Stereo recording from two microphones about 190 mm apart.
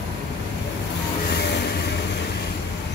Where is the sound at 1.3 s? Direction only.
60° left (ahead or behind).